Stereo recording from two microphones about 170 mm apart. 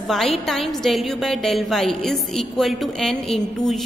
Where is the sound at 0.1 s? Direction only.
Centre (ahead or behind).